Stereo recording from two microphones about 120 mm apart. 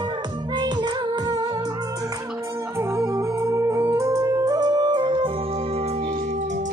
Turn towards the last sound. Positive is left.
turn(degrees=-40)  # may be behind; listen again after turning